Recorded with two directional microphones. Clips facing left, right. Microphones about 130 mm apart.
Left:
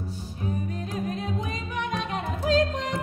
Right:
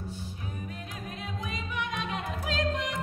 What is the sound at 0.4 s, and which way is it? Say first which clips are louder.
Music: left 9 dB; 35° left (ahead or behind).